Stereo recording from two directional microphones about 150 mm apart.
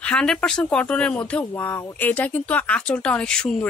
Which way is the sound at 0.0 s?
5° left (ahead or behind).